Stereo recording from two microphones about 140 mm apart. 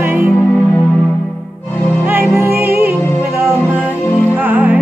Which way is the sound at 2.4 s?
15° right (ahead or behind).